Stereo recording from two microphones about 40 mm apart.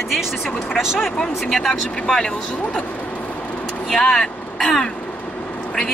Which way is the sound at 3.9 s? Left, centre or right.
Centre.